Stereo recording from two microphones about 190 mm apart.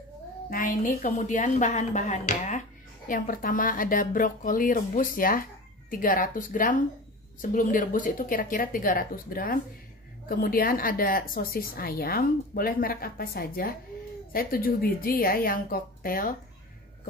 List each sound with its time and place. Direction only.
0.5 s a woman's voice: 45° left (ahead or behind)